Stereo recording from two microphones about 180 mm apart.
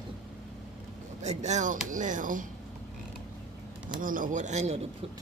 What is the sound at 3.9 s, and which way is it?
Speech, 50° right (ahead or behind).